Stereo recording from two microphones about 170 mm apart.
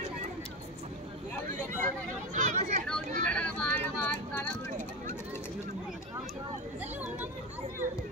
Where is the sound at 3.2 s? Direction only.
10° left (ahead or behind).